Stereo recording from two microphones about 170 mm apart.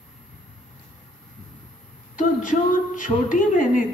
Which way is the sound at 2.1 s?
50° left (ahead or behind).